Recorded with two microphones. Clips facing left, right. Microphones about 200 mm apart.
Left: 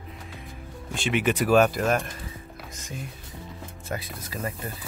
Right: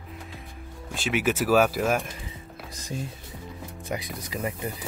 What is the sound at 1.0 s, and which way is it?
Speech, 5° right (ahead or behind).